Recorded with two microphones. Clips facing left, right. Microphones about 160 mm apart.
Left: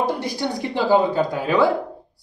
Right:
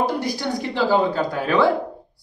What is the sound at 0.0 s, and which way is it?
Speech, 25° left (ahead or behind).